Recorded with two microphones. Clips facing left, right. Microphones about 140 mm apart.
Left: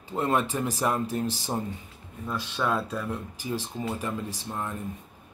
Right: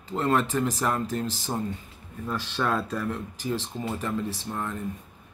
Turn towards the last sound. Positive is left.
turn(degrees=15)  # may be behind; listen again after turning